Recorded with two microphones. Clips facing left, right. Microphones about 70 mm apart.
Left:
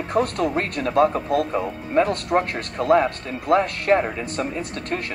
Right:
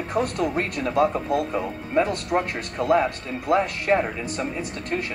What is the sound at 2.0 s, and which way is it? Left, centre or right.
Speech, left.